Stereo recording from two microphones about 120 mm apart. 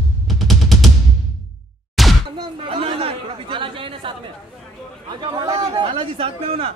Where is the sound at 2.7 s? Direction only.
50° right (ahead or behind).